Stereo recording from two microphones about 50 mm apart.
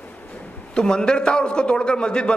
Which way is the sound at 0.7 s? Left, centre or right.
Centre.